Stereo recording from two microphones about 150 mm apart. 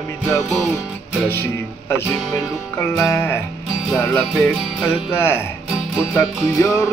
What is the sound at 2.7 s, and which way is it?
Music, 15° left (ahead or behind).